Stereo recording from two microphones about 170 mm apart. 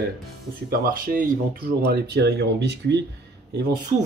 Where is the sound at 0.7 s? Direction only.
55° right (ahead or behind).